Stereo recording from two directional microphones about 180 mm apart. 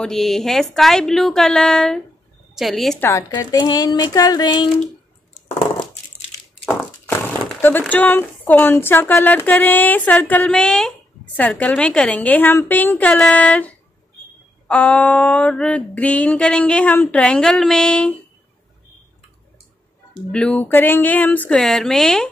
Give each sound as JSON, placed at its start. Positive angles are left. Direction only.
{"t": 0.0, "sound": "a woman's voice", "side_deg": 0}
{"t": 3.0, "sound": "speech", "side_deg": 15}
{"t": 6.6, "sound": "a sound", "side_deg": 10}
{"t": 20.2, "sound": "speech", "side_deg": 5}